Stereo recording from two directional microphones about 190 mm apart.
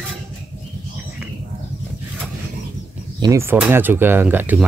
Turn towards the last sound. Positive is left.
turn(degrees=-10)  # may be behind; listen again after turning